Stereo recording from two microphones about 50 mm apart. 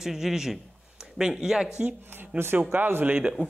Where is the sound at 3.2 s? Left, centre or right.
Right.